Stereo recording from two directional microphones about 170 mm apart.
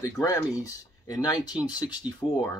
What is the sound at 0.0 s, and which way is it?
Speech, 20° left (ahead or behind).